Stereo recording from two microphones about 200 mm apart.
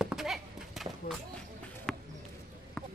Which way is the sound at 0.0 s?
Centre (ahead or behind).